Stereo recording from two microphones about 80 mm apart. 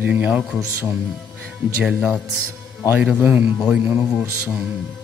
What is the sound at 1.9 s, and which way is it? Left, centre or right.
Speech, centre.